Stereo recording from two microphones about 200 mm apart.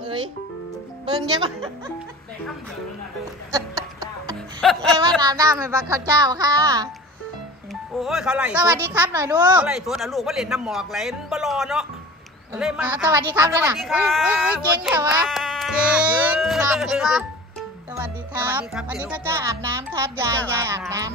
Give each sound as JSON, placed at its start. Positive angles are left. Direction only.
{"t": 0.0, "sound": "speech", "side_deg": -25}
{"t": 3.5, "sound": "music", "side_deg": -20}
{"t": 4.6, "sound": "music", "side_deg": 0}
{"t": 5.2, "sound": "a woman's voice", "side_deg": -20}
{"t": 7.9, "sound": "a child's voice", "side_deg": 0}
{"t": 13.7, "sound": "a child's voice", "side_deg": 0}
{"t": 15.2, "sound": "speech", "side_deg": 0}
{"t": 18.5, "sound": "a child's voice", "side_deg": -5}